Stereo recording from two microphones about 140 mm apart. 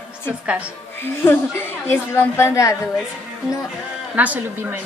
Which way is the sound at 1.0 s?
15° left (ahead or behind).